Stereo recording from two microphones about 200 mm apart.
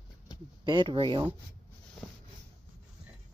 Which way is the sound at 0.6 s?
20° right (ahead or behind).